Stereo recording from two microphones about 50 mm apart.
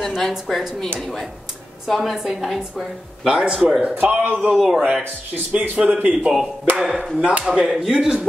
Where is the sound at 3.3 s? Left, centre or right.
Centre.